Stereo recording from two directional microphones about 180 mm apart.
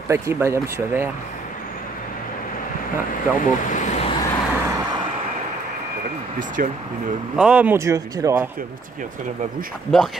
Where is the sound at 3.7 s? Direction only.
40° left (ahead or behind).